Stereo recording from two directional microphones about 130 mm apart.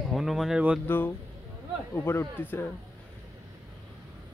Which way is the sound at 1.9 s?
20° left (ahead or behind).